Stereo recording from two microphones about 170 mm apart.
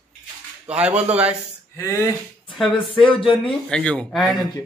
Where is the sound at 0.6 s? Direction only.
5° right (ahead or behind).